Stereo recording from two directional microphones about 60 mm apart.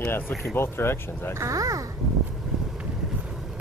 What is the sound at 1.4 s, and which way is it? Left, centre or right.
Speech, right.